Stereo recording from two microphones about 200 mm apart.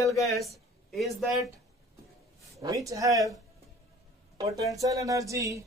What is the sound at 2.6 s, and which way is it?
Speech, 15° right (ahead or behind).